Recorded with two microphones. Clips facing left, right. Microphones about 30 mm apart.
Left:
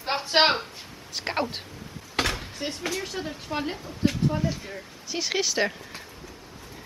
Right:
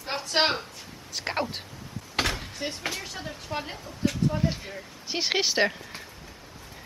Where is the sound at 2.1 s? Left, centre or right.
Centre.